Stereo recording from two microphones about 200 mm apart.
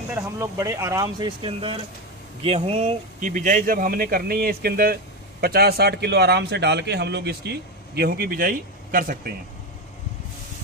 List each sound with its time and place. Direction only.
0.1 s a man's voice: 15° right (ahead or behind); by 9.3 s 45° right (ahead or behind)